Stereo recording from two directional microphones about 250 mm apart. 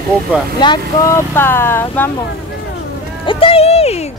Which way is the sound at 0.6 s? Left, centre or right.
Centre.